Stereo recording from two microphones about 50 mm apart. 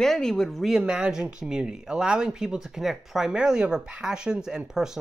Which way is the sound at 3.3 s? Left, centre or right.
Centre.